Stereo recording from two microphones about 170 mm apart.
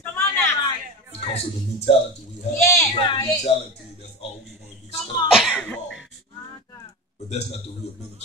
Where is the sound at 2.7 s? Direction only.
20° left (ahead or behind).